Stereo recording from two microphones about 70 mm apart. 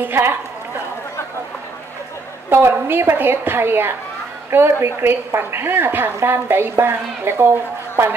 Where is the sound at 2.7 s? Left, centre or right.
Right.